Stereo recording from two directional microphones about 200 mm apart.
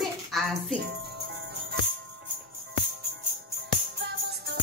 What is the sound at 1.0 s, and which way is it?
Music, 55° right (ahead or behind).